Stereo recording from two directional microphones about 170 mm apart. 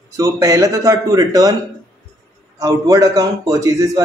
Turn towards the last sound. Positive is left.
turn(degrees=-20)  # may be behind; listen again after turning